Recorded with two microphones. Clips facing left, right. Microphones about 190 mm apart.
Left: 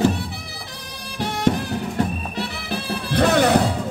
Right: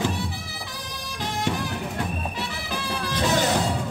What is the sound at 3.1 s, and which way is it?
Music, 60° left (ahead or behind).